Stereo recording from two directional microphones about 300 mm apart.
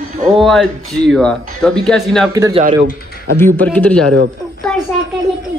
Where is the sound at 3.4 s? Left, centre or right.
Centre.